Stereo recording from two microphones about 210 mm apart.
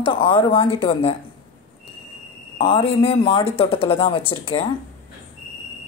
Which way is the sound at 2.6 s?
25° left (ahead or behind).